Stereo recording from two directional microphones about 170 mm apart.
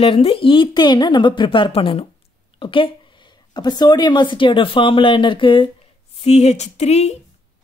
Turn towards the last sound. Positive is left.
turn(degrees=40)  # may be behind; listen again after turning